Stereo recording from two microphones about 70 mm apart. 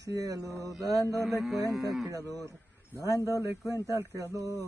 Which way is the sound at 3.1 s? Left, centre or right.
Left.